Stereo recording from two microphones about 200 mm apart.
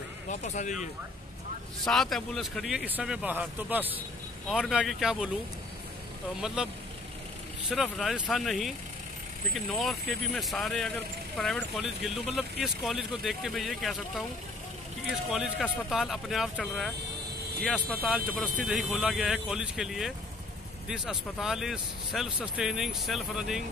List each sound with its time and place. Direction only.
0.3 s speech: 35° left (ahead or behind)
1.9 s speech: centre (ahead or behind)
6.4 s speech: 5° right (ahead or behind)
7.7 s speech: centre (ahead or behind)
15.2 s speech: 5° right (ahead or behind)